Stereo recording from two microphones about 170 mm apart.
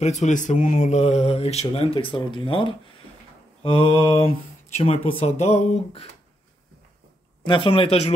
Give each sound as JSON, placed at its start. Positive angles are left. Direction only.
{"t": 0.0, "sound": "speech", "side_deg": 45}
{"t": 7.4, "sound": "speech", "side_deg": 30}